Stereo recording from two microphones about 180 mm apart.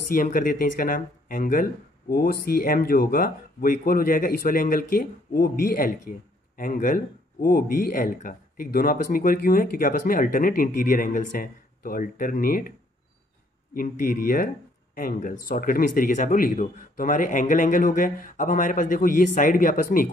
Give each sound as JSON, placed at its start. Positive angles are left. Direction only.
{"t": 0.1, "sound": "speech", "side_deg": 50}
{"t": 13.7, "sound": "speech", "side_deg": 50}